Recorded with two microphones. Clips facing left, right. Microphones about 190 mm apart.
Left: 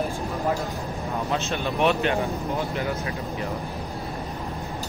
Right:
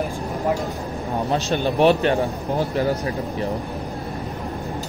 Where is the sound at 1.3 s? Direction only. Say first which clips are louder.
Right 6 dB; 35° right (ahead or behind).